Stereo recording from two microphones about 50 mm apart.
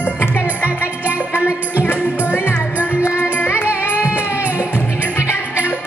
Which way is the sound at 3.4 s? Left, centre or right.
Left.